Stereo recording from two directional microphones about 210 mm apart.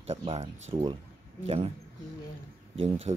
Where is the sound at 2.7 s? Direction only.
25° right (ahead or behind).